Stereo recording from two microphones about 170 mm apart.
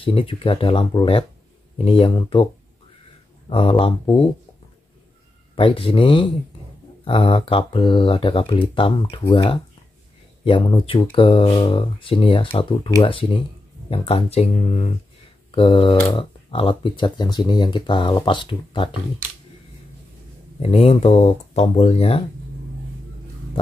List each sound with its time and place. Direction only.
0.0 s speech: 30° left (ahead or behind)
3.4 s speech: 30° left (ahead or behind)
5.6 s speech: 30° left (ahead or behind)
20.6 s speech: 35° left (ahead or behind)